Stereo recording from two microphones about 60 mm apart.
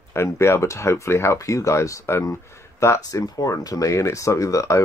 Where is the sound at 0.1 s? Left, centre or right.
Left.